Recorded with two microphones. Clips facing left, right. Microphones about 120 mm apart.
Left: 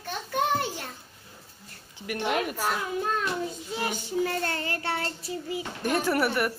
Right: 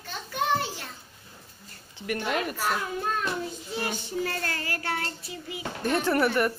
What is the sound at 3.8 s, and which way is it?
Child singing, 15° left (ahead or behind).